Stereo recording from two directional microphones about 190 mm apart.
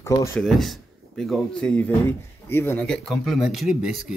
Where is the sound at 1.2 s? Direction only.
Centre (ahead or behind).